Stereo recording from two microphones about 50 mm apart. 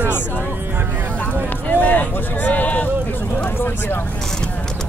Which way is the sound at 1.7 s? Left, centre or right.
Left.